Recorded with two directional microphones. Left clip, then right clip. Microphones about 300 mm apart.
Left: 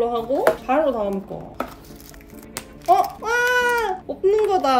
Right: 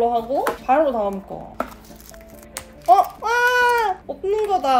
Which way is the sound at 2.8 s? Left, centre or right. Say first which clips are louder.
Right 3 dB; centre.